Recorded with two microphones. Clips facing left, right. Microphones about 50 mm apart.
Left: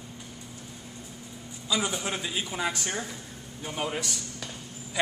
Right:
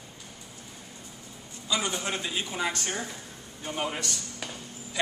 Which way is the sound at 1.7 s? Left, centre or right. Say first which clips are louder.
Left 1 dB; centre.